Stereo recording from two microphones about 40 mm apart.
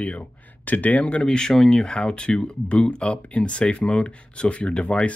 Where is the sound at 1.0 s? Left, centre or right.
Left.